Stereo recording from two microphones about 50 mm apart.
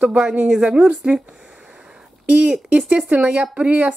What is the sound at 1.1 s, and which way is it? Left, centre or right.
Speech, right.